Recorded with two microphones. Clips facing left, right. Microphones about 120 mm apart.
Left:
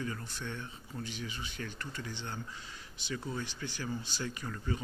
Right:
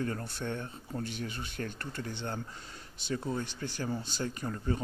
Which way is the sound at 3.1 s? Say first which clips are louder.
Right 4 dB; 40° right (ahead or behind).